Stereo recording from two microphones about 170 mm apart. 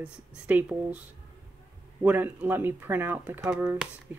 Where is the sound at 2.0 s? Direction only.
10° right (ahead or behind).